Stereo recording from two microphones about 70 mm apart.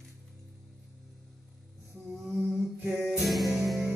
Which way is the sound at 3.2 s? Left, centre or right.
Centre.